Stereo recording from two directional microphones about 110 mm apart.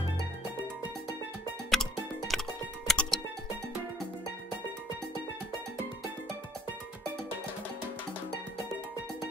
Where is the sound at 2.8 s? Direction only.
Centre (ahead or behind).